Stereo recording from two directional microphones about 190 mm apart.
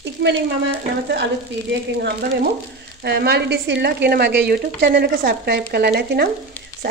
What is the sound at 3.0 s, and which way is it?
Speech, 60° right (ahead or behind).